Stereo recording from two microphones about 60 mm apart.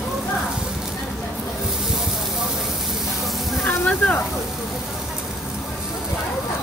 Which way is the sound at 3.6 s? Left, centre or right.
Left.